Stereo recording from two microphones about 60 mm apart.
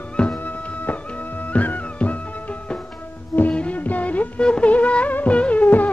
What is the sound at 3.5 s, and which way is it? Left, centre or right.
Music, left.